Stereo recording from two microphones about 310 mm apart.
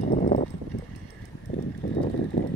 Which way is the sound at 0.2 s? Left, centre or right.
Left.